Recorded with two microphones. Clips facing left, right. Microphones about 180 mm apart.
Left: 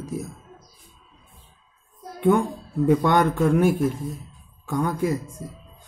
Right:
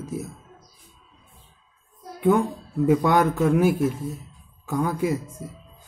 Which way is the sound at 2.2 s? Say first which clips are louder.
Even; 5° right (ahead or behind).